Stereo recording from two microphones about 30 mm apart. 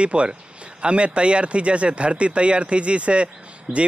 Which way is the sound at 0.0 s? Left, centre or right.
Right.